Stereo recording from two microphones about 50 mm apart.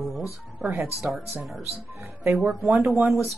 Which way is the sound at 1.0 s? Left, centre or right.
Right.